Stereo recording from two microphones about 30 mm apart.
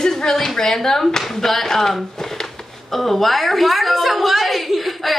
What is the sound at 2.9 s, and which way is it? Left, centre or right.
A woman's voice, centre.